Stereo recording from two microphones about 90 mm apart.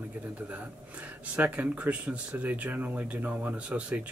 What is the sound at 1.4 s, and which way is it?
Speech, 15° right (ahead or behind).